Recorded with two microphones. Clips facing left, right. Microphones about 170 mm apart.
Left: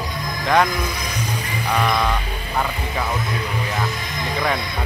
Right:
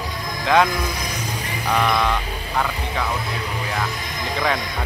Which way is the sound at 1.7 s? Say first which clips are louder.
Even; 5° left (ahead or behind).